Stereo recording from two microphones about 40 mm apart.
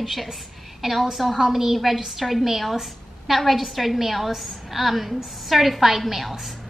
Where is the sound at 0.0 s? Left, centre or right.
Centre.